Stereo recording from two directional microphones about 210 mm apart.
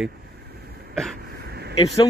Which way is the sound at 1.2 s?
50° right (ahead or behind).